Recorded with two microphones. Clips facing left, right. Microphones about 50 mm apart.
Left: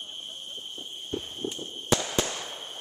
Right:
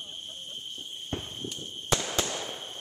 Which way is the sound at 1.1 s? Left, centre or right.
Right.